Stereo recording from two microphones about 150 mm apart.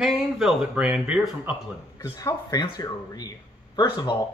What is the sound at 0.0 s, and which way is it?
Speech, centre (ahead or behind).